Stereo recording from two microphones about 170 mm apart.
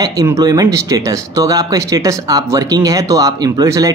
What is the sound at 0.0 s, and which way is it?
Speech, 20° right (ahead or behind).